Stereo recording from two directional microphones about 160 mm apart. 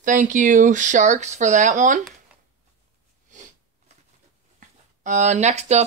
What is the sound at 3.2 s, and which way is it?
Sniff, 50° right (ahead or behind).